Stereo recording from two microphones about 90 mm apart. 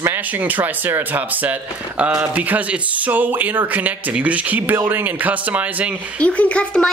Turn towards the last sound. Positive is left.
turn(degrees=10)  # may be behind; listen again after turning